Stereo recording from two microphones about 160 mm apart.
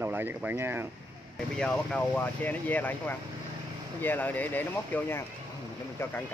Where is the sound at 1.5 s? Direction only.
5° left (ahead or behind).